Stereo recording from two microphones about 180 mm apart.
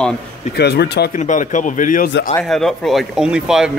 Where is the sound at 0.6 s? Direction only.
65° left (ahead or behind).